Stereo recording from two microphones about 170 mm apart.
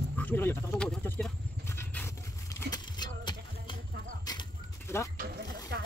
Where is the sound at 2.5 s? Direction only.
25° left (ahead or behind).